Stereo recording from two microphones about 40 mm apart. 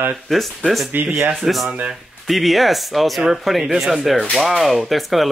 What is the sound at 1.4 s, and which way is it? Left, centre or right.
Speech, centre.